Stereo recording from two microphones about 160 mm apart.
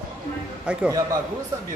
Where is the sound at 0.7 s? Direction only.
5° right (ahead or behind).